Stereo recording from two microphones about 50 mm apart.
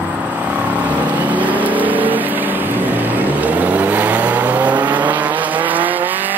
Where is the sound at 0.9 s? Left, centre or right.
Right.